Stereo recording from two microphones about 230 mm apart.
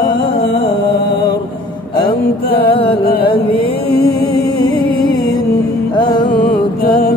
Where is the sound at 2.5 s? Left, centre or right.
Left.